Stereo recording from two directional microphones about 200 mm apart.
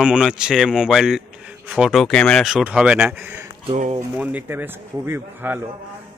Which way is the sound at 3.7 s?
35° right (ahead or behind).